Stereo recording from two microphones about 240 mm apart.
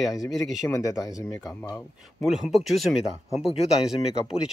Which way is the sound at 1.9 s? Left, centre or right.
Centre.